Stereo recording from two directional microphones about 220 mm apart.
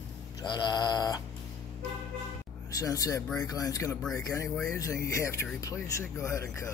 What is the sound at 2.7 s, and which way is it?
Speech, 15° left (ahead or behind).